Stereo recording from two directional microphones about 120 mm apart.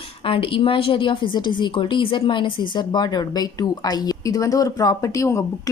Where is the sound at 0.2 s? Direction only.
50° left (ahead or behind).